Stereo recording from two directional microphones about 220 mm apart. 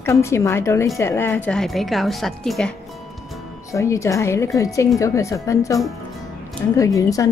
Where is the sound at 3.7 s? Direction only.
15° left (ahead or behind).